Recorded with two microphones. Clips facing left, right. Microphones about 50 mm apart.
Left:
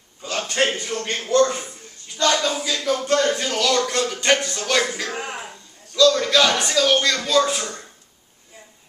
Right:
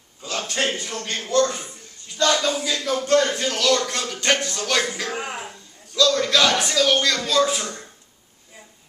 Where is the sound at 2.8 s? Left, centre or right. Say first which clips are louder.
Even; centre.